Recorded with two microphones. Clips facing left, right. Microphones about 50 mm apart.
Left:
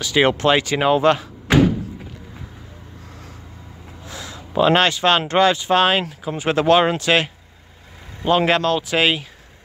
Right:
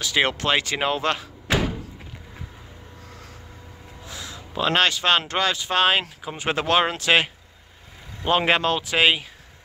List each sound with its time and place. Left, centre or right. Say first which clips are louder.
0.0 s speech: left 6 dB; centre
4.6 s speech: left 5 dB; centre
5.3 s speech: left 8 dB; centre
5.7 s speech: left 4 dB; centre
8.3 s speech: left 3 dB; centre